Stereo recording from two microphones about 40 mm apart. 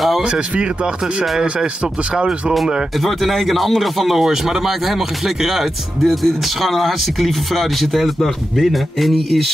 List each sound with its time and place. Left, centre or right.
0.2 s speech: right
2.1 s speech: centre
3.0 s speech: centre